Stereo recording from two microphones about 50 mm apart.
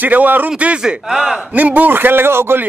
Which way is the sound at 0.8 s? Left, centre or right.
Centre.